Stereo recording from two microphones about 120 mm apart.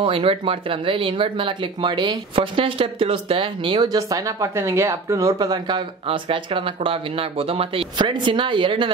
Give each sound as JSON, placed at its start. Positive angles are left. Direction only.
{"t": 0.0, "sound": "speech", "side_deg": -50}